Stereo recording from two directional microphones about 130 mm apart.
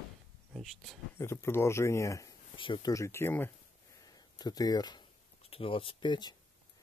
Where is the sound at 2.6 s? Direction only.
35° left (ahead or behind); by 3.5 s 15° left (ahead or behind).